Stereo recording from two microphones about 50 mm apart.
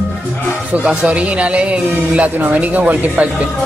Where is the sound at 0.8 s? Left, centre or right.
Right.